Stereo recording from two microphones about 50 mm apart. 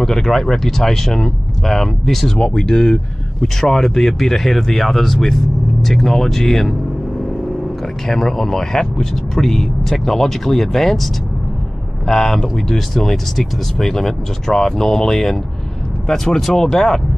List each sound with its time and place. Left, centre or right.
0.0 s speech: centre
2.4 s speech: centre
3.6 s speech: centre
8.1 s speech: centre
12.1 s speech: centre